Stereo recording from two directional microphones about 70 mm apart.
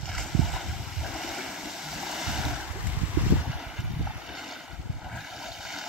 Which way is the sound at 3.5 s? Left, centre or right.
Centre.